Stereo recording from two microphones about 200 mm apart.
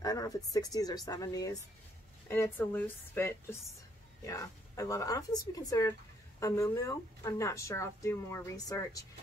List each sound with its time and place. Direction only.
0.0 s speech: 20° left (ahead or behind)